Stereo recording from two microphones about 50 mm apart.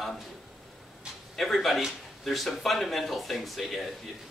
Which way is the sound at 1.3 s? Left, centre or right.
Centre.